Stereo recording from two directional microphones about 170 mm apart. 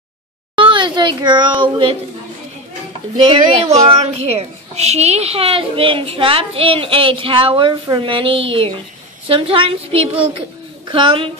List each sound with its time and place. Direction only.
0.6 s a woman's voice: 30° right (ahead or behind)
3.2 s speech: 30° right (ahead or behind)
4.0 s a woman's voice: 40° right (ahead or behind)